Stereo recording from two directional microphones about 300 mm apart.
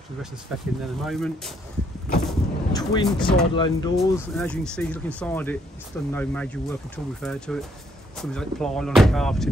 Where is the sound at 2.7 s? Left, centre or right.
Centre.